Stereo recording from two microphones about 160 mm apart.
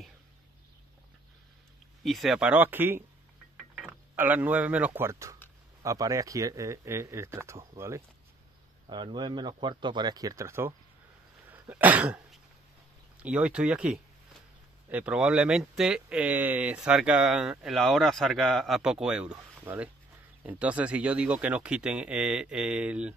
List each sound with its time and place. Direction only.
2.0 s speech: centre (ahead or behind)
4.1 s speech: 10° right (ahead or behind)
8.8 s speech: 30° right (ahead or behind)
11.5 s cough: 10° right (ahead or behind)
13.2 s speech: 5° right (ahead or behind)